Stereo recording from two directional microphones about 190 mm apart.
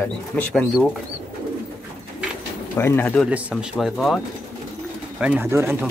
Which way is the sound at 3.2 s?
5° right (ahead or behind).